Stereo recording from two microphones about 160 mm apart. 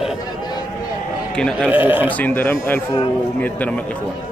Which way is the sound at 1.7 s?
10° right (ahead or behind).